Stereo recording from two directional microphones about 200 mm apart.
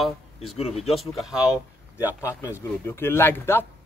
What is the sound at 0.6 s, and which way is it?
Speech, 30° left (ahead or behind).